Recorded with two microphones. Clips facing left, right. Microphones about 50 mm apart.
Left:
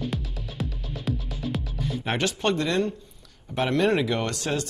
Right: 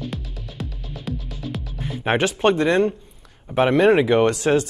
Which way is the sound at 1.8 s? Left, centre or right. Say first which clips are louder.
Right 6 dB; right.